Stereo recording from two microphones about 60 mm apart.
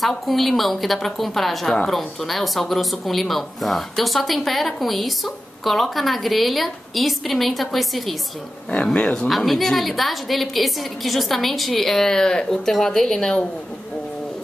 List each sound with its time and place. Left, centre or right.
0.0 s speech: centre
8.6 s speech: centre
9.3 s speech: centre